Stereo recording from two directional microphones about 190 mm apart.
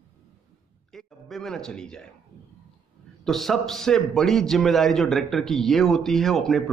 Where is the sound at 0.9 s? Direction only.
Centre (ahead or behind).